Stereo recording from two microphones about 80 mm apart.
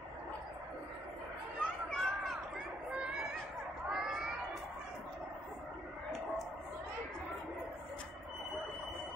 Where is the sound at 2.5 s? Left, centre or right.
Centre.